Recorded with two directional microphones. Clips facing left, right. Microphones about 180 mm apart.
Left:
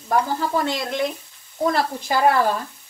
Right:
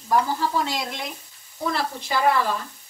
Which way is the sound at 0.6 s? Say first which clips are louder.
Left 6 dB; 55° left (ahead or behind).